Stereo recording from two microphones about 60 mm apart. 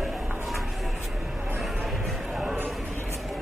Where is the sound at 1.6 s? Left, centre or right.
Centre.